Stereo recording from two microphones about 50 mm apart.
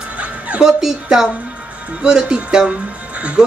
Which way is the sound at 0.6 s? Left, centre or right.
Centre.